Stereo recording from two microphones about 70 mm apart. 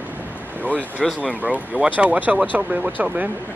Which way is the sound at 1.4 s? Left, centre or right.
Centre.